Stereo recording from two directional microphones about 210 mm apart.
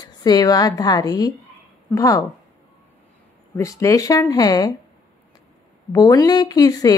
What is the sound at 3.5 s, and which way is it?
Speech, 15° left (ahead or behind).